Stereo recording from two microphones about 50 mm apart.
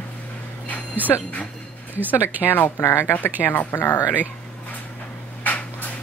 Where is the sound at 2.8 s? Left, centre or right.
Left.